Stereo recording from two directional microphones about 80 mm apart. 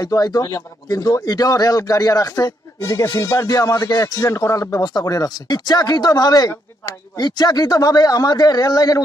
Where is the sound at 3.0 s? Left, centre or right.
Left.